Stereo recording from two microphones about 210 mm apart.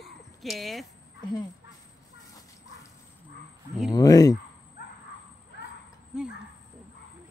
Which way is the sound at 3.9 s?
15° left (ahead or behind).